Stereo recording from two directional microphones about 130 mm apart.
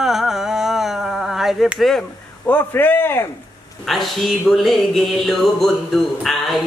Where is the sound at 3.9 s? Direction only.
Centre (ahead or behind).